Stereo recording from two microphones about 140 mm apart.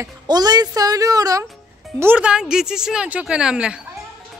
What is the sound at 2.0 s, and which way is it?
Speech, 10° right (ahead or behind).